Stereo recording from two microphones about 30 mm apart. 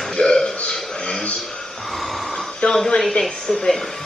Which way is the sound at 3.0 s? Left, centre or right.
Left.